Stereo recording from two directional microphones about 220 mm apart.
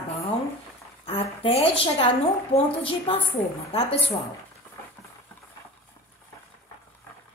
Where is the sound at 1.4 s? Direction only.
25° left (ahead or behind).